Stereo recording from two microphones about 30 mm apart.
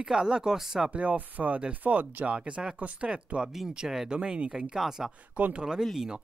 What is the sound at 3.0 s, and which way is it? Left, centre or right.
Speech, right.